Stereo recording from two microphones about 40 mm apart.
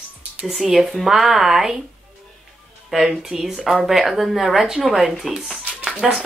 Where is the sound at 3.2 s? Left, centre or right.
Centre.